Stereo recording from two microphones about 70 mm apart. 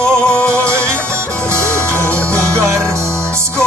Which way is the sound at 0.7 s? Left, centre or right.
Right.